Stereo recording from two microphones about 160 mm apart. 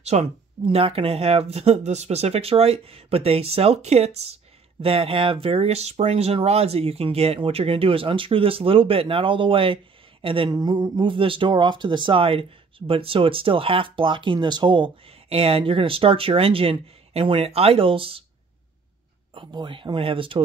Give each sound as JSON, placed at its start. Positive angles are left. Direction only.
{"t": 0.0, "sound": "speech", "side_deg": -45}
{"t": 19.3, "sound": "speech", "side_deg": -30}